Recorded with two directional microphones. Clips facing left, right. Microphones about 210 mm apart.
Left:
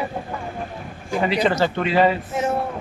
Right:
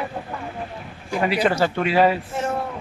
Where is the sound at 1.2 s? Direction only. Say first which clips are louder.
Even; 5° right (ahead or behind).